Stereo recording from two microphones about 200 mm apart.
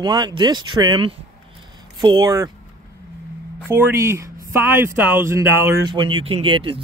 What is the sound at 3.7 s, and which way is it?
Speech, 10° right (ahead or behind).